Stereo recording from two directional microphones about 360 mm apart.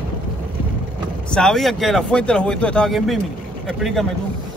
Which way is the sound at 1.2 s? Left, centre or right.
Centre.